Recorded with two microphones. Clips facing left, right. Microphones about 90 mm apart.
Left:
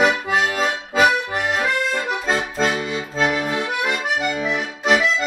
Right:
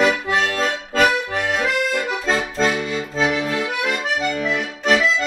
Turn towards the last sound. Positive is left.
turn(degrees=5)  # may be behind; listen again after turning